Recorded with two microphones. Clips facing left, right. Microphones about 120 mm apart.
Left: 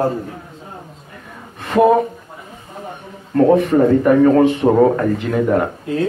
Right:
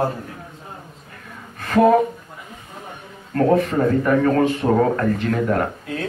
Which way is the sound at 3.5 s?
20° left (ahead or behind).